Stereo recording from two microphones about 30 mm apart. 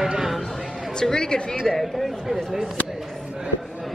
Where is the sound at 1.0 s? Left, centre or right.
Left.